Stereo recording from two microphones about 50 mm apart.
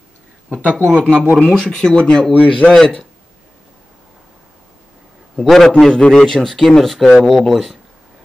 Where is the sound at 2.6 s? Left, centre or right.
Left.